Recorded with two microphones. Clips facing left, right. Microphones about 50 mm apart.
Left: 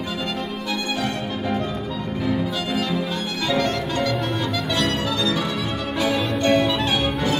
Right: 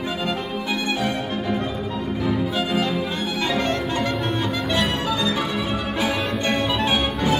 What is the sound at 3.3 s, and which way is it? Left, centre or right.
Music, right.